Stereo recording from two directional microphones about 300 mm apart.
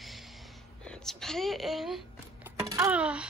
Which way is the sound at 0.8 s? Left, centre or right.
Centre.